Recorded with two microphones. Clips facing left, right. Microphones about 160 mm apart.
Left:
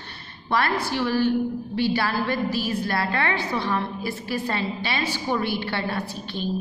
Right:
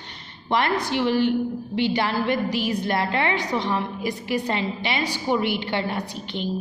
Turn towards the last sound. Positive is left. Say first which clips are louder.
# even
turn(degrees=-15)  # may be behind; listen again after turning